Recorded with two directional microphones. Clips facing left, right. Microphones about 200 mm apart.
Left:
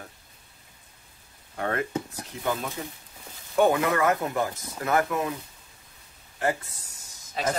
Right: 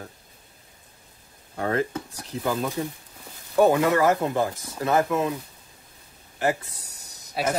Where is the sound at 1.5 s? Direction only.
30° right (ahead or behind).